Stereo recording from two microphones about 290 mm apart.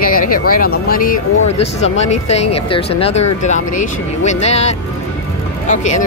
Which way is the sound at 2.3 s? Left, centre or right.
Left.